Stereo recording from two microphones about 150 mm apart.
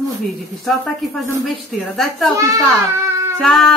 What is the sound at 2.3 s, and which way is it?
Speech, 20° right (ahead or behind).